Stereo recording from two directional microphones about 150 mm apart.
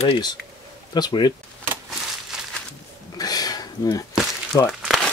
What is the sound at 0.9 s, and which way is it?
Speech, 30° left (ahead or behind).